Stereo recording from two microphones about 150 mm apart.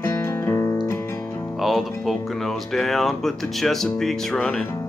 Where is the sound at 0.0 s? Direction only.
15° left (ahead or behind).